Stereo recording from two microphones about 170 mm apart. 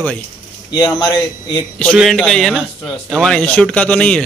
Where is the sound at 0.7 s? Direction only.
20° left (ahead or behind).